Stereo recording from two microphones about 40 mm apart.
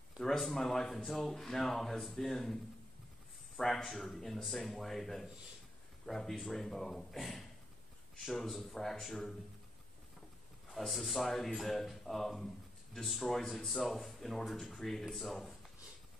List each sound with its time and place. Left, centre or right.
0.2 s speech: centre
10.7 s speech: centre